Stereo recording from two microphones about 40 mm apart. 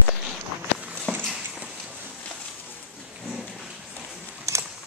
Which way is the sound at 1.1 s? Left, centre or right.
Left.